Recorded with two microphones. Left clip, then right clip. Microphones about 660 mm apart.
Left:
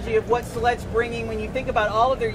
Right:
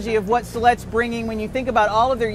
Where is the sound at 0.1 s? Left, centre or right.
Right.